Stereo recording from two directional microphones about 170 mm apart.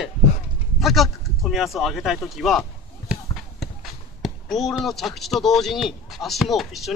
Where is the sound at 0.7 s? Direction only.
Centre (ahead or behind).